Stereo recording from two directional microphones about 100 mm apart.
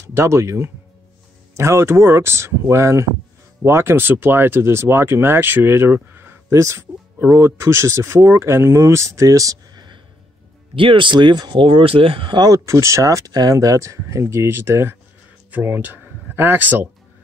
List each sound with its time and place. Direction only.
0.0 s speech: 30° right (ahead or behind)
10.8 s speech: 55° right (ahead or behind)
12.4 s speech: 35° right (ahead or behind); by 16.9 s 20° right (ahead or behind)